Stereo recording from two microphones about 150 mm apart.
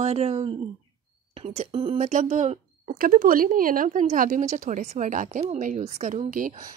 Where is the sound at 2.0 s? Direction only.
55° right (ahead or behind).